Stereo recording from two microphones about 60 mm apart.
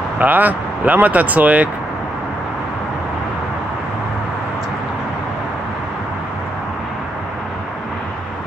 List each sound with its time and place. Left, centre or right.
0.2 s speech: right